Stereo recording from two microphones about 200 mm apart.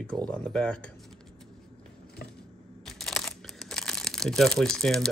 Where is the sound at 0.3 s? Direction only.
5° left (ahead or behind).